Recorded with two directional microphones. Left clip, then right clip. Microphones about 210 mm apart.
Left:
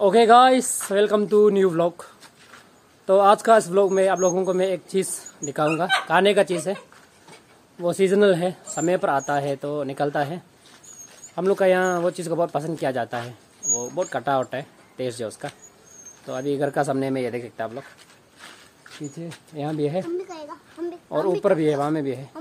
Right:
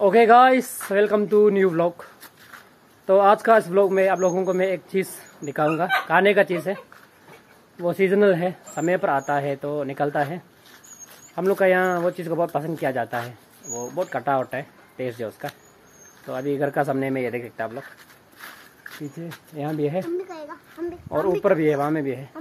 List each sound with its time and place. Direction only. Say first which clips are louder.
0.0 s a man's voice: even; 10° left (ahead or behind)
3.1 s a man's voice: even; 10° left (ahead or behind)
7.8 s a man's voice: even; 15° left (ahead or behind)
19.8 s a man's voice: even; 10° left (ahead or behind)
20.2 s speech: right 1 dB; 5° right (ahead or behind)
21.1 s a man's voice: even; 15° left (ahead or behind)
21.4 s speech: right 1 dB; centre (ahead or behind)